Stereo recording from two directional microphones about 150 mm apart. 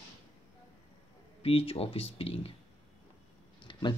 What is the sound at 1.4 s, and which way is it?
Speech, 40° left (ahead or behind).